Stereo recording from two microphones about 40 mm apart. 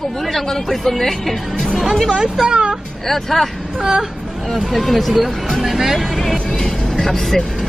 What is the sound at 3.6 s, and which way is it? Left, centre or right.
A man's voice, centre.